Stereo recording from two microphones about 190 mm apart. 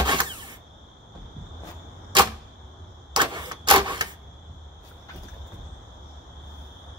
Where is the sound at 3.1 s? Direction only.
25° right (ahead or behind).